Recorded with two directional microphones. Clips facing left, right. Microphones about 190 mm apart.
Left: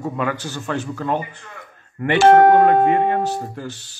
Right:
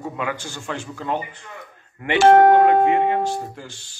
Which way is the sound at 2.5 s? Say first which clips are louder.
Left 1 dB; 50° left (ahead or behind).